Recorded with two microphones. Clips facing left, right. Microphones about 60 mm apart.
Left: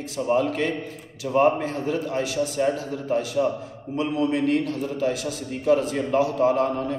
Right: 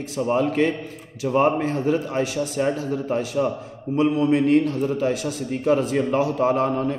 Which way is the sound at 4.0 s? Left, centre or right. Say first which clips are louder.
Right 4 dB; right.